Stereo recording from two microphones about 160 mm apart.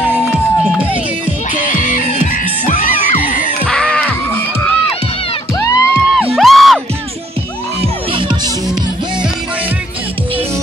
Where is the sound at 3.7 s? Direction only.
5° left (ahead or behind).